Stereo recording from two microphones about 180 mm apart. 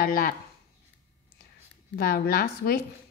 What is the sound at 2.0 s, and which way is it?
Speech, 60° left (ahead or behind).